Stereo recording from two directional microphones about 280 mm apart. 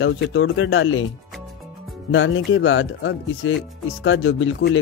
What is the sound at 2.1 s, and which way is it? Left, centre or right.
Speech, left.